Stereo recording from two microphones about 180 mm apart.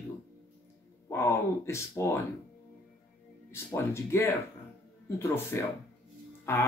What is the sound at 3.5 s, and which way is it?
Speech, 15° left (ahead or behind).